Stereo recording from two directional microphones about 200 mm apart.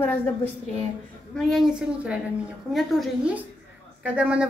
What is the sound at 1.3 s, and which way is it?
Speech, centre (ahead or behind).